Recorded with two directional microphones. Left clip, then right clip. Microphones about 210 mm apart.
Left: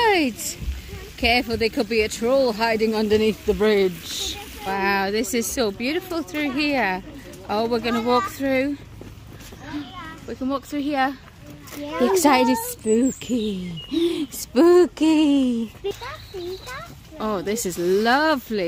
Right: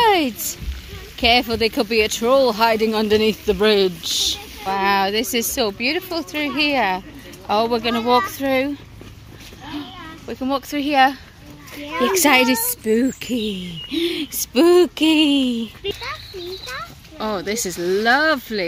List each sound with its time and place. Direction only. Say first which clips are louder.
0.0 s a sound: right 3 dB; centre (ahead or behind)
1.2 s speech: right 4 dB; 5° right (ahead or behind)
11.9 s speech: right 2 dB; 15° left (ahead or behind)
12.8 s speech: right 1 dB; centre (ahead or behind)
14.6 s speech: right 1 dB; 5° left (ahead or behind)
18.0 s speech: right 5 dB; 20° left (ahead or behind)